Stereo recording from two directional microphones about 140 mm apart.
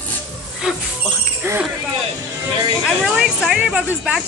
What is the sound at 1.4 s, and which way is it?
Speech, 15° right (ahead or behind).